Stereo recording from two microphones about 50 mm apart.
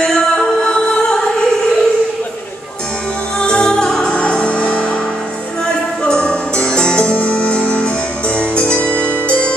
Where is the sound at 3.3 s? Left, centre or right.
Centre.